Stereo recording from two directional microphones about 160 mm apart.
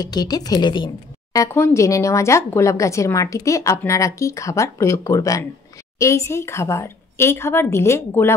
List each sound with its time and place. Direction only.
0.0 s a woman's voice: 25° left (ahead or behind)